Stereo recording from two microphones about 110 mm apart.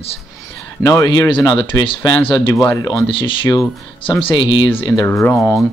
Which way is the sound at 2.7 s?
30° left (ahead or behind).